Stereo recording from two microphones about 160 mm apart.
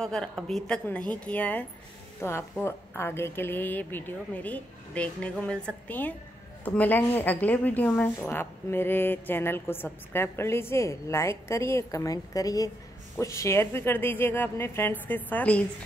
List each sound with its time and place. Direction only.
0.0 s a woman's voice: 5° left (ahead or behind)